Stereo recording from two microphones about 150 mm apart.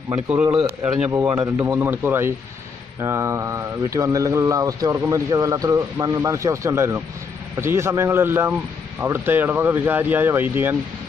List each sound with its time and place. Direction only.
0.1 s speech: 15° right (ahead or behind)